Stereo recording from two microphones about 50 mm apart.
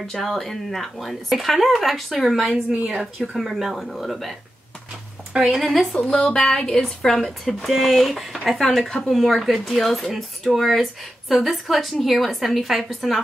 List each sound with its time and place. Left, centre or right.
0.0 s speech: centre
5.3 s speech: right
5.6 s a woman's voice: centre